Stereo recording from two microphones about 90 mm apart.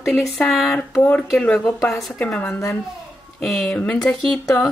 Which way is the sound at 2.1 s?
15° left (ahead or behind).